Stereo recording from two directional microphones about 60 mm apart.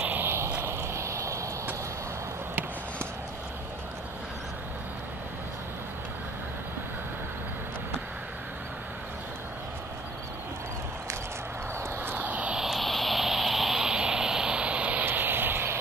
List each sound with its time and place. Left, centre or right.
0.0 s vehicle: right
0.6 s vehicle: right
12.0 s vehicle: right
12.5 s vehicle: centre; by 15.0 s right
15.0 s vehicle: right